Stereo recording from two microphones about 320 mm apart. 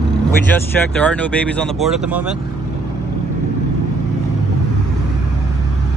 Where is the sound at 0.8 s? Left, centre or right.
Centre.